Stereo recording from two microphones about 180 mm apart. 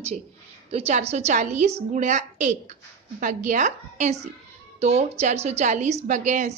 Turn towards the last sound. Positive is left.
turn(degrees=-40)  # may be behind; listen again after turning